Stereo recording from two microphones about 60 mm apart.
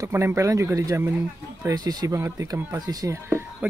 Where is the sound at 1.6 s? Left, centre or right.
Right.